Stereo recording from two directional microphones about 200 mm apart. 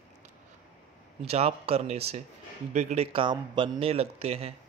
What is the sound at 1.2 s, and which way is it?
A man's voice, 30° right (ahead or behind).